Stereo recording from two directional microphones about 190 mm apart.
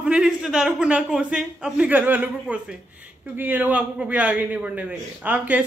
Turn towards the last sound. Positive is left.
turn(degrees=-5)  # may be behind; listen again after turning